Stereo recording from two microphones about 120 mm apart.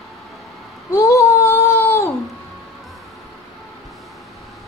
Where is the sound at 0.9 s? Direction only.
30° left (ahead or behind).